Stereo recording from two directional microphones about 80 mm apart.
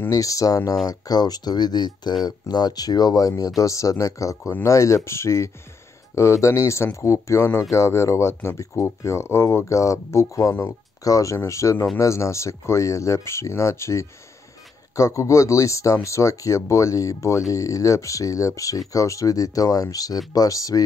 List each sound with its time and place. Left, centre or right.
0.1 s speech: left